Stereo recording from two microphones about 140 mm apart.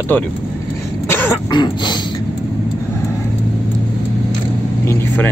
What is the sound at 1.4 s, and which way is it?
Throat clearing, 30° left (ahead or behind).